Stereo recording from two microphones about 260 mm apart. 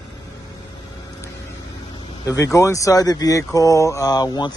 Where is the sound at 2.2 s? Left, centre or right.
Centre.